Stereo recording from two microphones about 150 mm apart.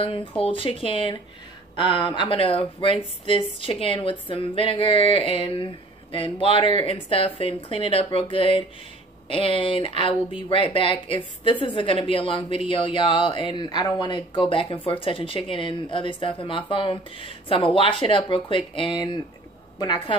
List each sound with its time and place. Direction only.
0.0 s a woman's voice: 35° left (ahead or behind)